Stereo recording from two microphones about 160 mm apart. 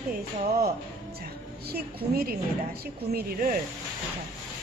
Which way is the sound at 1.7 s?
75° right (ahead or behind).